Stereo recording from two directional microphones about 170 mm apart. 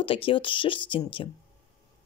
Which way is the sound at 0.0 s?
30° left (ahead or behind).